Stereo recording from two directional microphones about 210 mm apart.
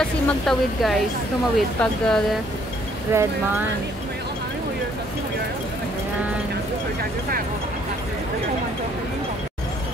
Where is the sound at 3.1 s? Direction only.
10° right (ahead or behind).